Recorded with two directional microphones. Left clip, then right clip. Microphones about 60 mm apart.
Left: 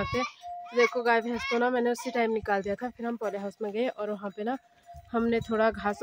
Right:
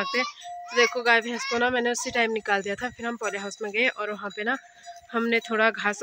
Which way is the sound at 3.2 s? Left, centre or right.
Centre.